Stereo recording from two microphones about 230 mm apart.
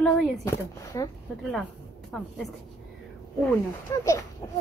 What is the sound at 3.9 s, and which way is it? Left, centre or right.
Speech, centre.